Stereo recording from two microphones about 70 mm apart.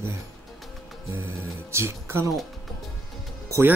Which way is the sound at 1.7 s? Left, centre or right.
Right.